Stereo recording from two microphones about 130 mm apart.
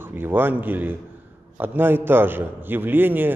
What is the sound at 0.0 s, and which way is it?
A man's voice, 15° right (ahead or behind).